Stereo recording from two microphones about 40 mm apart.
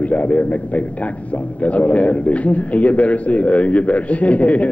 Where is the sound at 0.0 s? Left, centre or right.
Left.